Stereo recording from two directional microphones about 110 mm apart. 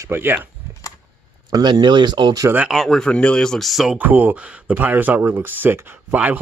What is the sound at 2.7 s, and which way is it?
Speech, centre (ahead or behind).